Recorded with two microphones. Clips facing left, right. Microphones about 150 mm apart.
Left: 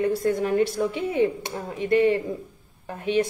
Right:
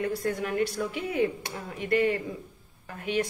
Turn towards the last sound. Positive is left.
turn(degrees=25)  # may be behind; listen again after turning